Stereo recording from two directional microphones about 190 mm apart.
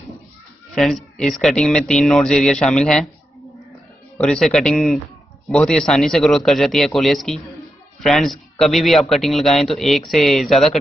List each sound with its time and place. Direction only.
0.7 s speech: centre (ahead or behind)
4.2 s speech: centre (ahead or behind)